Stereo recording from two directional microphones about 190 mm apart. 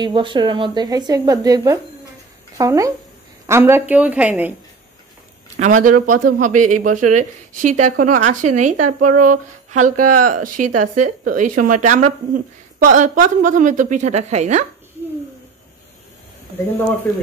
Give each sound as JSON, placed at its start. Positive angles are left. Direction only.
{"t": 0.0, "sound": "speech", "side_deg": -25}
{"t": 5.6, "sound": "a woman's voice", "side_deg": -40}